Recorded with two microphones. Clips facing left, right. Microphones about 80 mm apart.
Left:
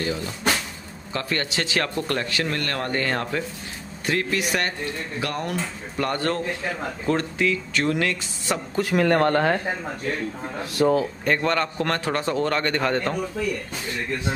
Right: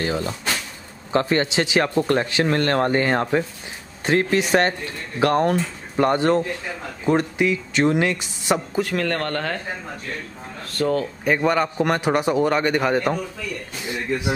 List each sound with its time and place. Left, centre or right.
0.0 s speech: right
1.1 s speech: right
5.2 s speech: right
5.9 s speech: right
8.9 s speech: centre
10.6 s speech: centre
11.2 s a man's voice: centre